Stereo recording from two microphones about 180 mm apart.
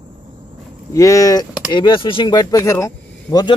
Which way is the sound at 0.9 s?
15° left (ahead or behind).